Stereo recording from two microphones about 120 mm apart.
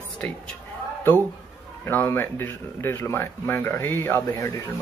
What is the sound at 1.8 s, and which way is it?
Speech, 15° left (ahead or behind).